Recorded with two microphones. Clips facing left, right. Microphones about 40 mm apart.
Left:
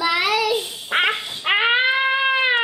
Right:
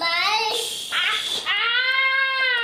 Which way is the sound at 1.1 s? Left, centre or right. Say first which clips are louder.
Right 1 dB; right.